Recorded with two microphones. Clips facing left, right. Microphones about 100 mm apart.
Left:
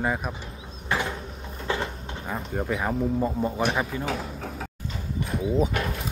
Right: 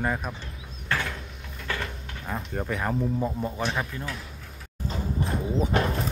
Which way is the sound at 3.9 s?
90° left.